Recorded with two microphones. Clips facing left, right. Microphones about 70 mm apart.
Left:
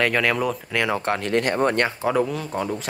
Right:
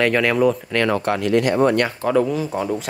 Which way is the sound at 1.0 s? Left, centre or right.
Left.